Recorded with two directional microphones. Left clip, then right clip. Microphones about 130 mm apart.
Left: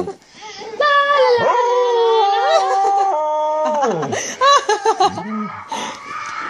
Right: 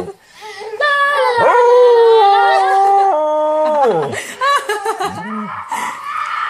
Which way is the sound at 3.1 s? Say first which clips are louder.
Right 4 dB; 35° right (ahead or behind).